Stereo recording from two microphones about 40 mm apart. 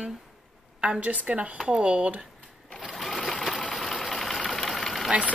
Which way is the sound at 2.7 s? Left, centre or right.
Centre.